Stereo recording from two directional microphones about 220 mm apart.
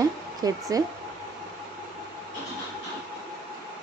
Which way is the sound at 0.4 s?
15° right (ahead or behind).